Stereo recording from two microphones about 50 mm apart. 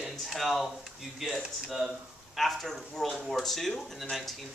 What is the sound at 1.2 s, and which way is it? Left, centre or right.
Speech, centre.